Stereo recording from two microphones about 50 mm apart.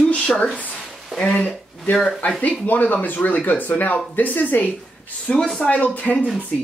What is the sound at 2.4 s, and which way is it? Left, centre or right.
Speech, left.